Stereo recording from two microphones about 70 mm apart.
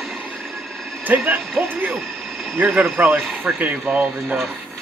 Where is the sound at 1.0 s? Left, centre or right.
Right.